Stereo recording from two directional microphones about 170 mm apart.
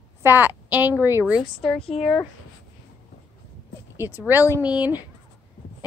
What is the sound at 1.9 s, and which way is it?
Speech, 40° left (ahead or behind).